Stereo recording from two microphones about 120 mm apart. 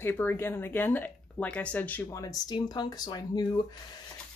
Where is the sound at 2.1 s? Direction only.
30° left (ahead or behind).